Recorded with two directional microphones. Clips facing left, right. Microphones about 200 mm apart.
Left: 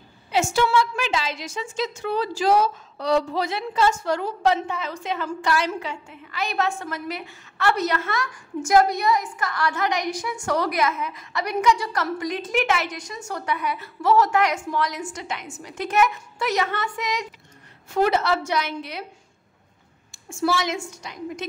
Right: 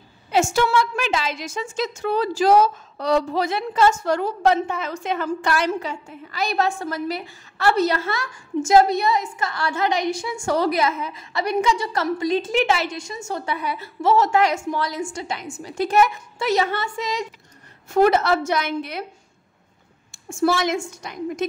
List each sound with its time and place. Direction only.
0.3 s a woman's voice: 45° right (ahead or behind); by 17.3 s 30° right (ahead or behind)
17.9 s a woman's voice: 50° right (ahead or behind)
20.2 s a woman's voice: 50° right (ahead or behind)